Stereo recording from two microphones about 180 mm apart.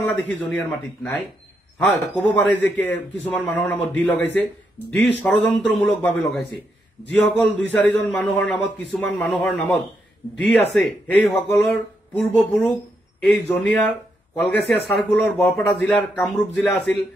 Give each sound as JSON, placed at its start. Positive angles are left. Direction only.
{"t": 0.0, "sound": "a man's voice", "side_deg": 10}
{"t": 7.1, "sound": "a man's voice", "side_deg": 5}
{"t": 10.3, "sound": "speech", "side_deg": 75}
{"t": 10.8, "sound": "a man's voice", "side_deg": 5}